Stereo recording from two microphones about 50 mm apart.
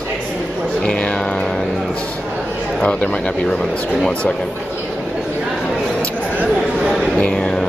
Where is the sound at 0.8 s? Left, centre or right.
Centre.